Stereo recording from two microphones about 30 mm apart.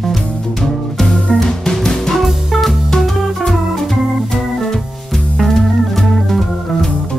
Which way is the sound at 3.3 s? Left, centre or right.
Centre.